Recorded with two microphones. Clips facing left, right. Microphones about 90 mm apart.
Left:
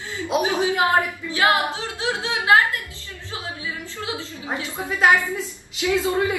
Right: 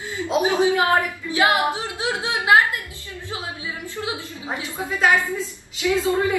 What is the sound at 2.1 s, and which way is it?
Speech, 20° left (ahead or behind).